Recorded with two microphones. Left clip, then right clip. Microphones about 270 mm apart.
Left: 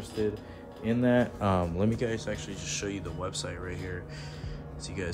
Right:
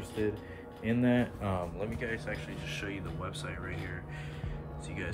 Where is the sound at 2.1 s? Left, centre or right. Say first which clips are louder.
Left 3 dB; centre.